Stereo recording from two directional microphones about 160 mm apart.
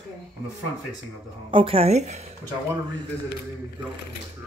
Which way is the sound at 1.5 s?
35° right (ahead or behind).